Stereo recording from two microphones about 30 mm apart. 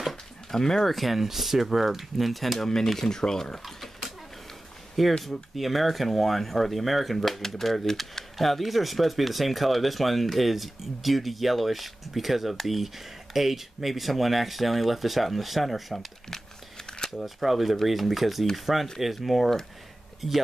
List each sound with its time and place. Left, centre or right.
0.5 s speech: centre
0.8 s speech: centre
2.7 s speech: centre
3.6 s a sound: centre
5.0 s speech: centre
16.3 s crumpling: left
17.2 s speech: centre